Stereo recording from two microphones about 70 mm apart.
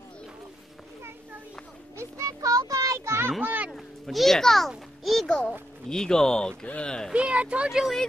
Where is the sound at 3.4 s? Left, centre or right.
Right.